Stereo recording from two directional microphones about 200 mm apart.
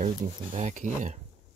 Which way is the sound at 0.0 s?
35° right (ahead or behind).